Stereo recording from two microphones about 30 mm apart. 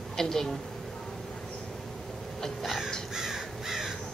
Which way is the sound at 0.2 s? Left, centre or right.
Centre.